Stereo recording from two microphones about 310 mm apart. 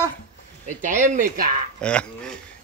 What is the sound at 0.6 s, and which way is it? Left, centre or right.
Speech, right.